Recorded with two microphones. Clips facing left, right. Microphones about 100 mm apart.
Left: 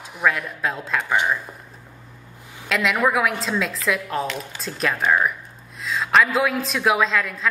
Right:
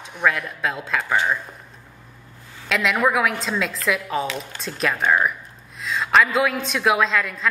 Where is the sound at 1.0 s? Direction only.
15° left (ahead or behind).